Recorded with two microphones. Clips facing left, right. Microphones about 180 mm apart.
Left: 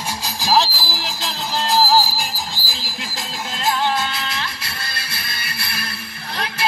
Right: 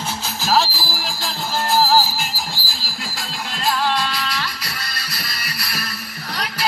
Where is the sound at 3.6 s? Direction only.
25° left (ahead or behind).